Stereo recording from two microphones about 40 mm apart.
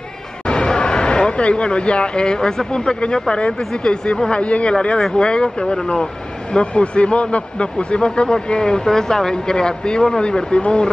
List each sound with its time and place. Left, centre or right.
0.5 s speech: left